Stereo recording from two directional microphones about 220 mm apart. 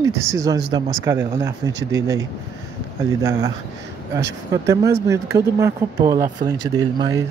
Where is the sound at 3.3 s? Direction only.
15° right (ahead or behind).